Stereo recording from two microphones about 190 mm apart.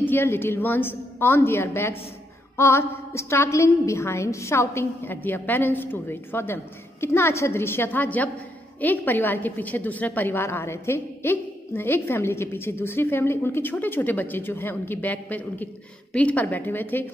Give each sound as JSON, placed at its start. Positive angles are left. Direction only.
{"t": 0.0, "sound": "a woman's voice", "side_deg": 10}